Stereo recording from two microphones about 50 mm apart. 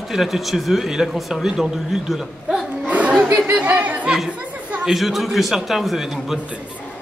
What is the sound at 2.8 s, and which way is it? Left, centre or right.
Chatter, right.